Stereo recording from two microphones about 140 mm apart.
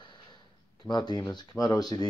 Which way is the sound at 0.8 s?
30° left (ahead or behind).